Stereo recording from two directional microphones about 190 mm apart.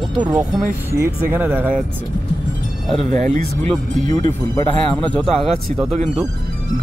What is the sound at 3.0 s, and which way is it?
Speech, 40° right (ahead or behind).